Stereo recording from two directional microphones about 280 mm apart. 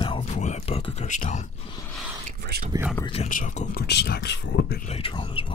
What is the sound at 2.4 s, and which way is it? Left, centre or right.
Speech, right.